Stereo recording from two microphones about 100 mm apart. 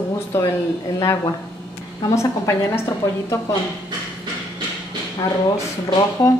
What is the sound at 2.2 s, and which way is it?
A woman's voice, 30° left (ahead or behind).